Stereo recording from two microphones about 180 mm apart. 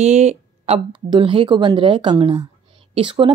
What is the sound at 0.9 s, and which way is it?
Speech, 25° right (ahead or behind).